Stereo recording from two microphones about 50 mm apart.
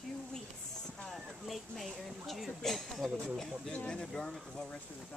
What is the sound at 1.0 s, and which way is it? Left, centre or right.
Speech, centre.